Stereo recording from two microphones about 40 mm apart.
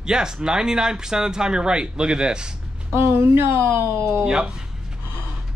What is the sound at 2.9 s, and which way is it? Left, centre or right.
Speech, right.